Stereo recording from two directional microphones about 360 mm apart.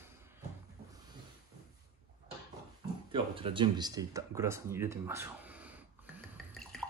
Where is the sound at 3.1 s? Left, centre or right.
Centre.